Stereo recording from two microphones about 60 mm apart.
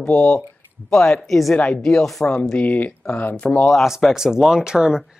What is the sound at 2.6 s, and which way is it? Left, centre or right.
Speech, left.